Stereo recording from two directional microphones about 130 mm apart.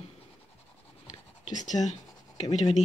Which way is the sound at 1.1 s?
30° left (ahead or behind).